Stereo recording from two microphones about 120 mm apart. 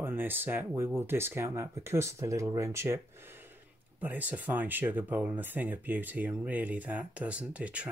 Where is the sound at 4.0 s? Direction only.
15° right (ahead or behind).